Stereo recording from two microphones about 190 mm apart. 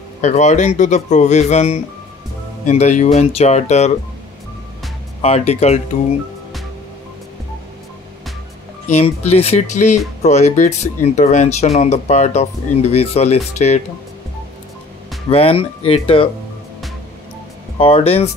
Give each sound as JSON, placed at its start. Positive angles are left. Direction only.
{"t": 0.2, "sound": "speech", "side_deg": 40}
{"t": 5.2, "sound": "speech", "side_deg": 35}
{"t": 8.9, "sound": "speech", "side_deg": 35}
{"t": 15.2, "sound": "speech", "side_deg": 30}
{"t": 17.7, "sound": "speech", "side_deg": 30}